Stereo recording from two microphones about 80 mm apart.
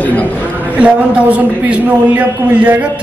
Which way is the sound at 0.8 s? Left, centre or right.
Centre.